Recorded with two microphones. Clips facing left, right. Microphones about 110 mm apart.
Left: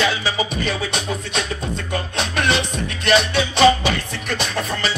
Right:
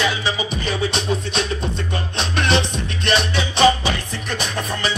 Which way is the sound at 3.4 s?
20° right (ahead or behind).